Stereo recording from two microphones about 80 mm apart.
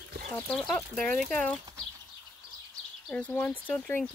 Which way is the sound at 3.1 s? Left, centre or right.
Left.